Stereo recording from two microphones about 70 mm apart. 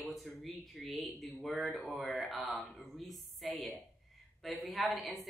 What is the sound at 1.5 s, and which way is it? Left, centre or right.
Speech, right.